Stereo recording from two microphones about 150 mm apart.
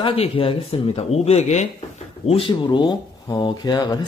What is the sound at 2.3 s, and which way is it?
Speech, 35° left (ahead or behind).